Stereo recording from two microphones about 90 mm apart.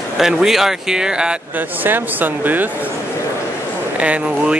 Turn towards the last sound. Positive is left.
turn(degrees=-15)  # may be behind; listen again after turning